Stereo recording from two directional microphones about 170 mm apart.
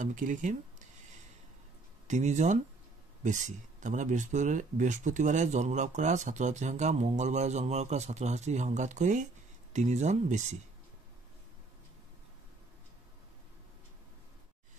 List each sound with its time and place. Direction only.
0.0 s speech: 50° right (ahead or behind)
2.0 s speech: 45° right (ahead or behind)